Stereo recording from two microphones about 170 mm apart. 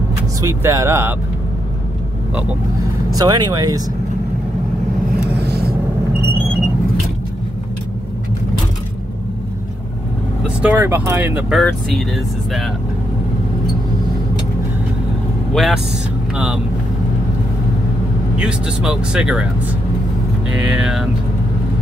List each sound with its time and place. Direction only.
0.4 s speech: 15° right (ahead or behind)
3.2 s speech: 25° right (ahead or behind)
5.3 s vehicle: 75° right (ahead or behind)
10.4 s speech: 10° right (ahead or behind)
11.6 s speech: centre (ahead or behind)
15.5 s speech: centre (ahead or behind)
18.4 s speech: 5° right (ahead or behind)
20.5 s music: 5° right (ahead or behind)